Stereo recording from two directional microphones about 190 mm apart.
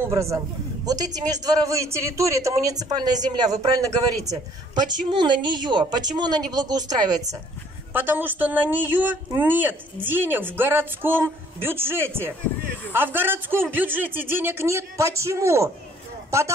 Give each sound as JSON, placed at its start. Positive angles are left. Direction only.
{"t": 0.0, "sound": "a man's voice", "side_deg": -15}
{"t": 7.9, "sound": "speech", "side_deg": -10}